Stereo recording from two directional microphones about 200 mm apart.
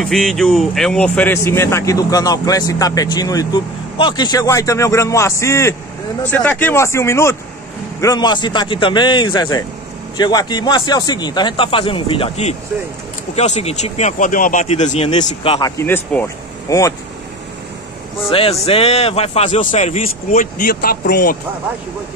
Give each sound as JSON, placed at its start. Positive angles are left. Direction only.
{"t": 0.0, "sound": "a man's voice", "side_deg": 0}
{"t": 15.8, "sound": "speech", "side_deg": 10}
{"t": 18.3, "sound": "a man's voice", "side_deg": 30}